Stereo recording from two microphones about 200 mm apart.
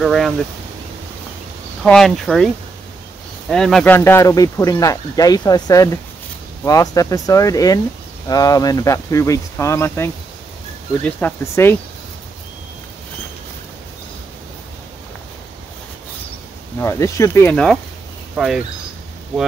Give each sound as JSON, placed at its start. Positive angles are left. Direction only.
{"t": 0.0, "sound": "speech", "side_deg": 0}
{"t": 1.8, "sound": "speech", "side_deg": 0}
{"t": 16.8, "sound": "speech", "side_deg": 15}